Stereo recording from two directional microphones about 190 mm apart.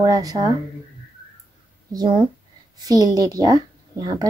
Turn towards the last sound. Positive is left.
turn(degrees=-20)  # may be behind; listen again after turning